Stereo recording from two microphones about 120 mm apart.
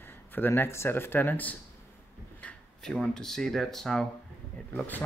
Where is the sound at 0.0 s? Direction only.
20° left (ahead or behind).